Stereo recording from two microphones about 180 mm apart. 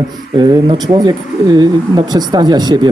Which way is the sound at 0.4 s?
25° right (ahead or behind).